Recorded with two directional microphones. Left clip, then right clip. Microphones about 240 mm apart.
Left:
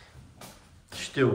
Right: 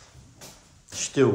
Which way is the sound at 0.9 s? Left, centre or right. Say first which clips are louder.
Right 5 dB; centre.